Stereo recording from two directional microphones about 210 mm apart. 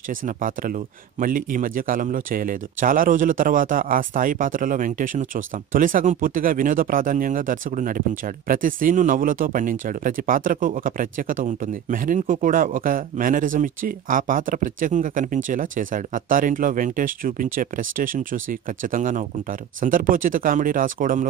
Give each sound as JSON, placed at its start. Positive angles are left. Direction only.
{"t": 1.2, "sound": "speech", "side_deg": -40}